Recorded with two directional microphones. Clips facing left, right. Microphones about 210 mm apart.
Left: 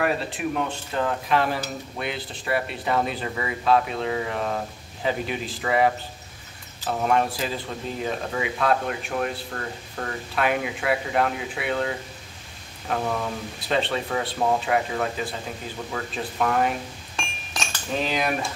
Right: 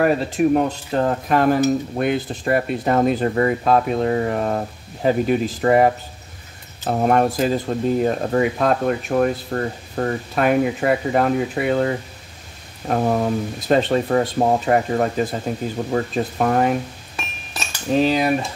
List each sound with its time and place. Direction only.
0.0 s speech: 45° right (ahead or behind)
17.9 s cutlery: 35° right (ahead or behind)